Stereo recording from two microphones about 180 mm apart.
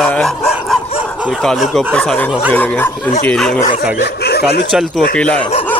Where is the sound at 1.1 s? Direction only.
5° right (ahead or behind).